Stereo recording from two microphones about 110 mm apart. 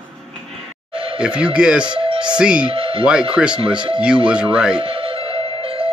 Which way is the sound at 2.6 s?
55° right (ahead or behind).